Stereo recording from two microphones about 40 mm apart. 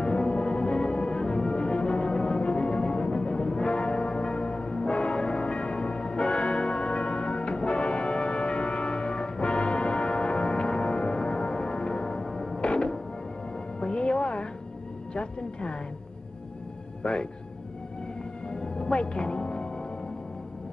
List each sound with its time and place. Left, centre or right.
0.0 s music: left
17.0 s a man's voice: left
18.5 s music: left